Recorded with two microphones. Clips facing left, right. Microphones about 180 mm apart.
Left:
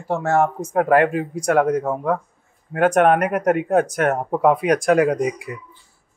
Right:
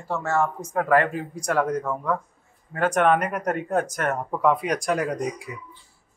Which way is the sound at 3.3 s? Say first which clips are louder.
Left 7 dB; 75° left (ahead or behind).